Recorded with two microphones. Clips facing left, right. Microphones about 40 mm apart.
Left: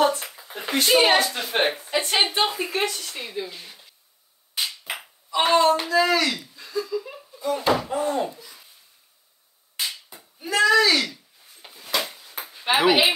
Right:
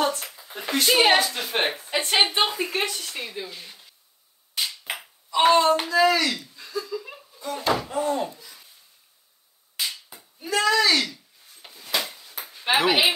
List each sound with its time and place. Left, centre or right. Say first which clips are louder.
0.0 s speech: left 4 dB; centre
1.9 s a woman's voice: even; right
2.4 s a woman's voice: left 1 dB; centre
4.9 s hands: even; centre
5.9 s speech: even; centre
10.1 s a child's voice: left 3 dB; centre
11.6 s a sound: left 1 dB; centre
12.6 s a woman's voice: left 2 dB; centre